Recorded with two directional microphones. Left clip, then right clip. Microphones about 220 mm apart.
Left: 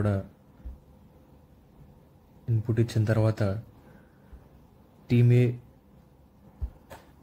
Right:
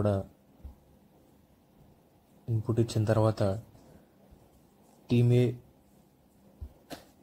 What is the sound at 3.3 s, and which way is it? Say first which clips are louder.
Speech: right 1 dB; 10° right (ahead or behind).